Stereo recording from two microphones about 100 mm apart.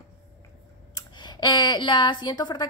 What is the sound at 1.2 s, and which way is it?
A woman's voice, 45° left (ahead or behind).